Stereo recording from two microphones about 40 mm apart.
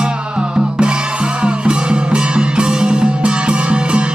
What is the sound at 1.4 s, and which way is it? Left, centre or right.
Music, right.